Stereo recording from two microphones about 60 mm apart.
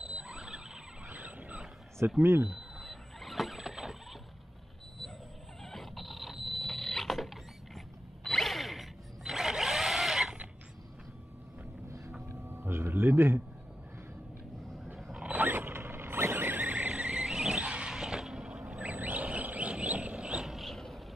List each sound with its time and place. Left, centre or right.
0.0 s squeal: centre
1.1 s vehicle: right
2.0 s speech: right
2.4 s squeal: centre
5.6 s a sound: centre
8.2 s drill: centre
12.3 s a sound: right
15.2 s mechanisms: right; by 18.8 s centre
18.8 s vehicle: right
20.4 s vehicle: centre